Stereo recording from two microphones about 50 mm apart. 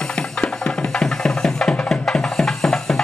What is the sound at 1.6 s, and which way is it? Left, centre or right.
Music, centre.